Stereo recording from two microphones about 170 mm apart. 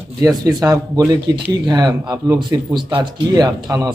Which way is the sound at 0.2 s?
25° right (ahead or behind).